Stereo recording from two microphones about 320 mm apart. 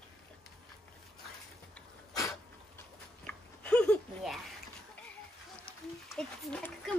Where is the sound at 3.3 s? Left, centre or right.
Centre.